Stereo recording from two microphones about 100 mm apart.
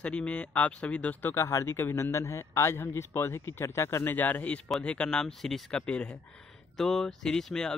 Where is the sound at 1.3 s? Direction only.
30° left (ahead or behind).